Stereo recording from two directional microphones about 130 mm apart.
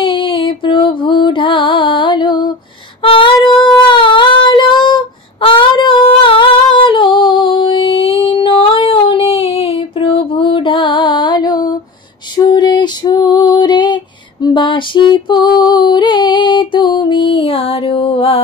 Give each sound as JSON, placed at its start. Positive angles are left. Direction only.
{"t": 0.0, "sound": "music", "side_deg": 40}
{"t": 3.0, "sound": "female singing", "side_deg": 45}